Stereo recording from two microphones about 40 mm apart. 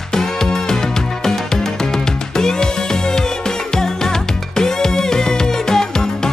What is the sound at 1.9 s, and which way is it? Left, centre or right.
Music, centre.